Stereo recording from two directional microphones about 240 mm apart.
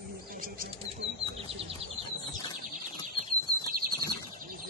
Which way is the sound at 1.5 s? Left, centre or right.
Right.